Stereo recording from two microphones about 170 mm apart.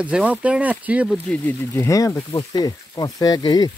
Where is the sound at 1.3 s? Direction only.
10° left (ahead or behind).